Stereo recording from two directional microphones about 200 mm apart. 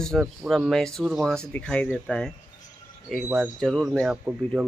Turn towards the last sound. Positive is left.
turn(degrees=-5)  # may be behind; listen again after turning